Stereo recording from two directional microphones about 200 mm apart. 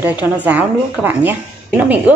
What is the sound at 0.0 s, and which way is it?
A woman's voice, 5° right (ahead or behind).